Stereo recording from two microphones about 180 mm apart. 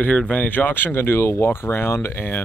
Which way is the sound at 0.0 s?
5° left (ahead or behind).